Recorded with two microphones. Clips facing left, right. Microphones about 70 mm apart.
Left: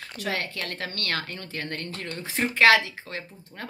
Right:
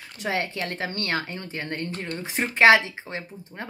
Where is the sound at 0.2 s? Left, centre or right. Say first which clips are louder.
Right 3 dB; right.